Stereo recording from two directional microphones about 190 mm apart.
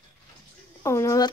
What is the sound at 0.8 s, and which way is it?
Speech, 15° left (ahead or behind).